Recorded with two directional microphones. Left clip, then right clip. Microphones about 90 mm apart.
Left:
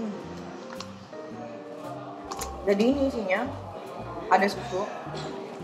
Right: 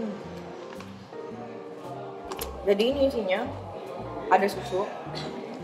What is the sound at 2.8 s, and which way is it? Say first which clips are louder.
Speech: right 1 dB; 20° left (ahead or behind).